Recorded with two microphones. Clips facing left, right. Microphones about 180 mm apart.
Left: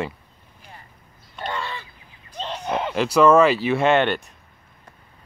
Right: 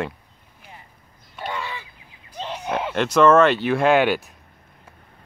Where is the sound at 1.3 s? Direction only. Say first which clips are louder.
Left 1 dB; 10° right (ahead or behind).